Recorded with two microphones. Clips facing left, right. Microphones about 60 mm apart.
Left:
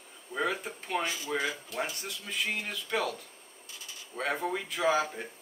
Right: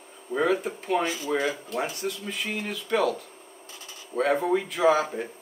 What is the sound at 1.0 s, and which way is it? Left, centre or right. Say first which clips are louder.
Speech: right 5 dB; right.